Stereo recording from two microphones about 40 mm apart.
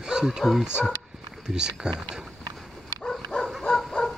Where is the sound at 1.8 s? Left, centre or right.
Centre.